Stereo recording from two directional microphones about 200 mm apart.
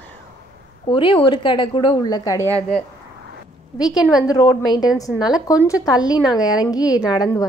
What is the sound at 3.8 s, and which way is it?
A woman's voice, 20° left (ahead or behind).